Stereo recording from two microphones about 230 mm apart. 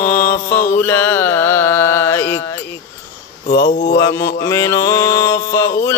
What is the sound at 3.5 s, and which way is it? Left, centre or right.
Speech, left.